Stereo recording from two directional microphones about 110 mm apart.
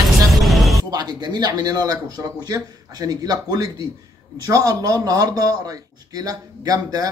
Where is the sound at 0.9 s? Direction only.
40° right (ahead or behind).